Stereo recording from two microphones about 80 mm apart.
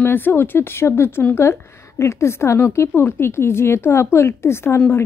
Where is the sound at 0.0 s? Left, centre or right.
Left.